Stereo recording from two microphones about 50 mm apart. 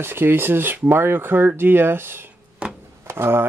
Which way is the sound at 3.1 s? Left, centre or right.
Right.